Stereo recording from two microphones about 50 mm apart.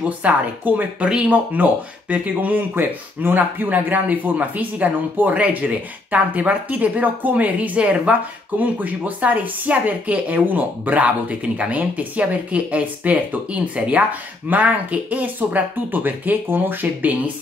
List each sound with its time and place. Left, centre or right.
0.2 s speech: right
1.0 s speech: right
1.5 s speech: right